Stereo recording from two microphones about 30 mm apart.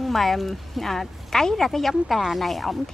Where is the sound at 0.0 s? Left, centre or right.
Centre.